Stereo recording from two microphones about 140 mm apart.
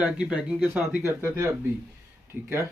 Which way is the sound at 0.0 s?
10° right (ahead or behind).